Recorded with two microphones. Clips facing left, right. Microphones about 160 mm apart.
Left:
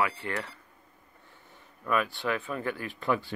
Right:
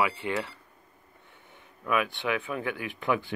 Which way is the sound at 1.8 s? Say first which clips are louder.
Right 1 dB; 5° right (ahead or behind).